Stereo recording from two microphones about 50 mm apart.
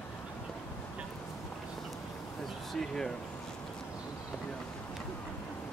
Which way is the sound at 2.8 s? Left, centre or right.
Centre.